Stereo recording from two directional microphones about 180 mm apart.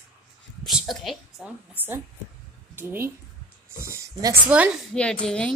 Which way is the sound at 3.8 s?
15° right (ahead or behind).